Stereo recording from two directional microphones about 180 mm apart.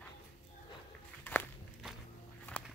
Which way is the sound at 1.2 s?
10° left (ahead or behind).